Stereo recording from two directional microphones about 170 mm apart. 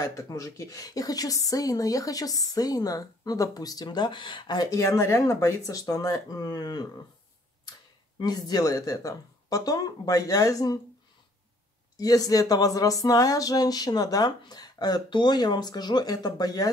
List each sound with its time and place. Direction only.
0.0 s speech: 20° left (ahead or behind)
8.2 s speech: 25° left (ahead or behind)
12.0 s speech: 20° left (ahead or behind)